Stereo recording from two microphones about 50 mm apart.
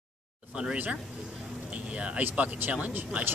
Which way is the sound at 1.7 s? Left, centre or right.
Right.